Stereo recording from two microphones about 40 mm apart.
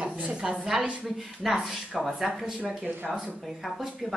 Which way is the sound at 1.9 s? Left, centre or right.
Centre.